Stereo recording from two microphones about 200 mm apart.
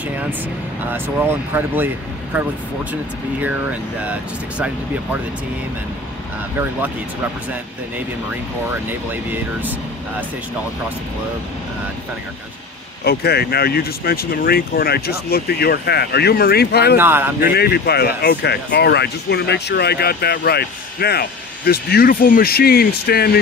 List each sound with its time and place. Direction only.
0.8 s speech: 10° right (ahead or behind)
2.9 s speech: 10° right (ahead or behind)
9.1 s speech: 10° right (ahead or behind)
13.0 s speech: 50° left (ahead or behind)
16.9 s speech: 10° right (ahead or behind)
17.4 s speech: 50° left (ahead or behind)